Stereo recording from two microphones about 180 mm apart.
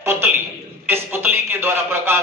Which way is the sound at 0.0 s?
15° right (ahead or behind).